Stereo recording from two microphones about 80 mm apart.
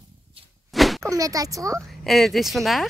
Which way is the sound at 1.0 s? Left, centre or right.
Right.